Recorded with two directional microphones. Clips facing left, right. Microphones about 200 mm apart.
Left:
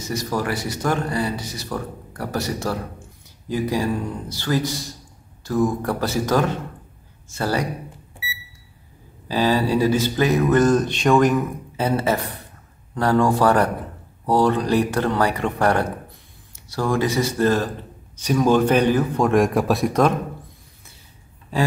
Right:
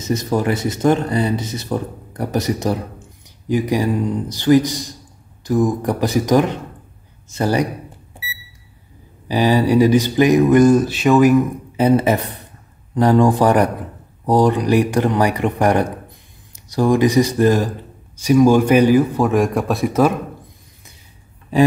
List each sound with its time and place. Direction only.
0.0 s speech: 20° right (ahead or behind)
9.3 s speech: 15° right (ahead or behind)
11.7 s speech: 15° right (ahead or behind)